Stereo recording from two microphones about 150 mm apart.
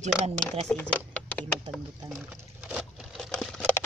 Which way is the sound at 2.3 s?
5° right (ahead or behind).